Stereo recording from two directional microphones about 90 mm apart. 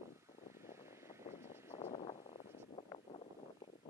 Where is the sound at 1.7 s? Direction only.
90° left.